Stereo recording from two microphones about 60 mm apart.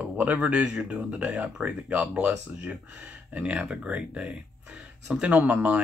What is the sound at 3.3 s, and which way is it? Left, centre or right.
Speech, right.